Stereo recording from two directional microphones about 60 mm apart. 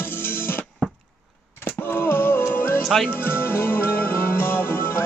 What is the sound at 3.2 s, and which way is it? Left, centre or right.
Music, left.